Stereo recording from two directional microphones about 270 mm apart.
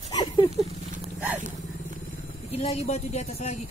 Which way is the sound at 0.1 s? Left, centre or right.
Centre.